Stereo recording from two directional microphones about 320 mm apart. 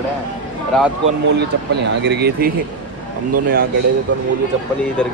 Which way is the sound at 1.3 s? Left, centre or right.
Right.